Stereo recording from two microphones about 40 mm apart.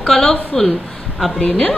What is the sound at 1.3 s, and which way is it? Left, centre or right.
Speech, left.